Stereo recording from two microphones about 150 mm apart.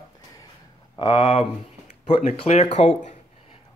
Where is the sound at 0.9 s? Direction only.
35° left (ahead or behind).